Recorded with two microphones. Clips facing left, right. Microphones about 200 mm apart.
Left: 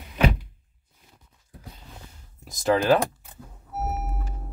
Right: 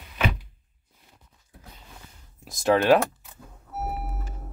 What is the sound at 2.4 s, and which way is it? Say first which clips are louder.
Speech: right 1 dB; centre (ahead or behind).